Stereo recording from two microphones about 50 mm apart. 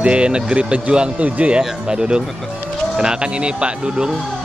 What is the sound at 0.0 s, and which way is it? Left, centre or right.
Speech, right.